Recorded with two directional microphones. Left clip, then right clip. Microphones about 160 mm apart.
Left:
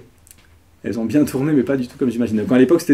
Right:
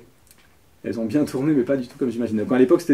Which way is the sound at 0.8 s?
20° left (ahead or behind).